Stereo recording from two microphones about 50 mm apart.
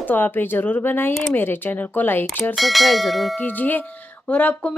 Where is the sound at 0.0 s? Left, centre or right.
Left.